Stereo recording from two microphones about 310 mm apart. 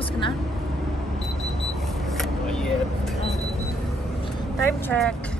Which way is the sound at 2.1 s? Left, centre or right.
Centre.